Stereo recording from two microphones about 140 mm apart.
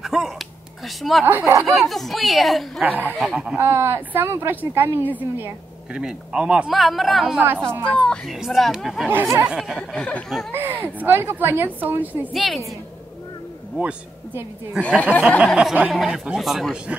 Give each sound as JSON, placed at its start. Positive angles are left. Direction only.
{"t": 0.0, "sound": "a sound", "side_deg": -5}
{"t": 0.8, "sound": "a man's voice", "side_deg": 0}
{"t": 1.2, "sound": "a woman's voice", "side_deg": -15}
{"t": 1.7, "sound": "a man's voice", "side_deg": 0}
{"t": 2.8, "sound": "a woman's voice", "side_deg": -10}
{"t": 3.5, "sound": "a woman's voice", "side_deg": -20}
{"t": 7.9, "sound": "a man's voice", "side_deg": 10}
{"t": 9.1, "sound": "a woman's voice", "side_deg": -15}
{"t": 9.5, "sound": "a man's voice", "side_deg": -5}
{"t": 9.8, "sound": "speech", "side_deg": 5}
{"t": 10.5, "sound": "a woman's voice", "side_deg": -15}
{"t": 12.3, "sound": "a man's voice", "side_deg": 0}
{"t": 13.7, "sound": "a woman's voice", "side_deg": -5}